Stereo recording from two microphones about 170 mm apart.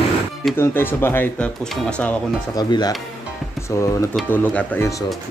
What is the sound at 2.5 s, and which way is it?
Speech, 25° left (ahead or behind).